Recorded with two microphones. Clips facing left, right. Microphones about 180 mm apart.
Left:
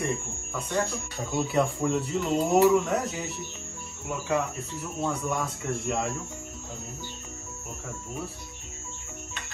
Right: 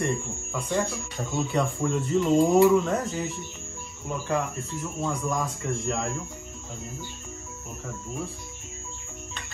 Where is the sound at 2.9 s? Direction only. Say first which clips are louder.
Right 1 dB; 70° left (ahead or behind).